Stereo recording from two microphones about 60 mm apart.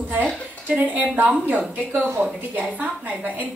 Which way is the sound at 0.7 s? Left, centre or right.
Right.